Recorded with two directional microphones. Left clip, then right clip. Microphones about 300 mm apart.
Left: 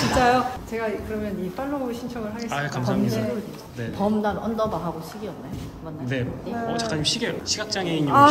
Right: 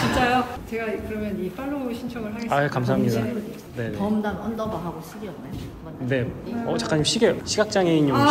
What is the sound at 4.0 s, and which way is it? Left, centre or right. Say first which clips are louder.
Speech: left 4 dB; left.